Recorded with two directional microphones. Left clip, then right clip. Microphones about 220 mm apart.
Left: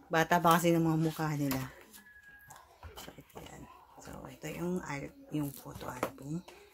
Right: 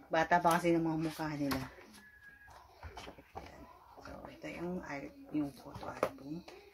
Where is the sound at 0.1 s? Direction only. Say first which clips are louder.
Left 3 dB; 50° left (ahead or behind).